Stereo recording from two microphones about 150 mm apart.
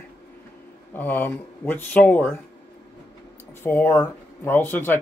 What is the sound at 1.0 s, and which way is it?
Speech, 10° left (ahead or behind).